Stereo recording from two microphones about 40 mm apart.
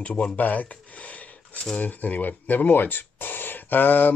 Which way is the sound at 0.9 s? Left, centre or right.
Left.